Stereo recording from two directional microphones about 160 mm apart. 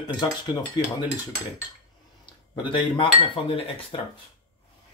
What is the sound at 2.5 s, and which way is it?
Cutlery, 30° left (ahead or behind).